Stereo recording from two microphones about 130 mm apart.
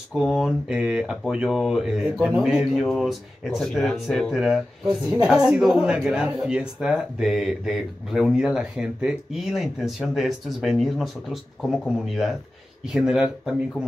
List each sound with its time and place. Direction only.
0.1 s speech: centre (ahead or behind)